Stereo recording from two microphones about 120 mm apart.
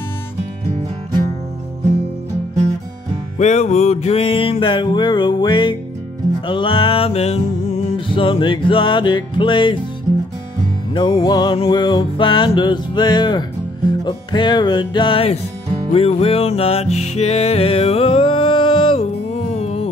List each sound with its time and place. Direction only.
3.3 s music: 70° left (ahead or behind)
8.1 s music: 45° left (ahead or behind)
10.9 s music: 40° left (ahead or behind); by 19.9 s 60° left (ahead or behind)